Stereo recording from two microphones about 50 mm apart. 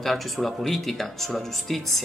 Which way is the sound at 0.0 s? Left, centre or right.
Centre.